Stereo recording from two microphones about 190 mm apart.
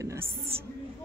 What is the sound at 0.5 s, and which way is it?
Speech, 30° right (ahead or behind).